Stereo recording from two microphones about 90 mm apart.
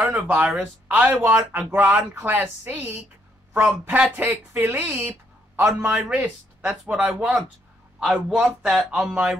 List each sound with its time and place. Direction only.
0.0 s a man's voice: 15° right (ahead or behind)